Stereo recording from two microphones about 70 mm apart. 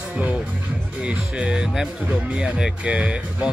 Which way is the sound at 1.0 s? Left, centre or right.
Centre.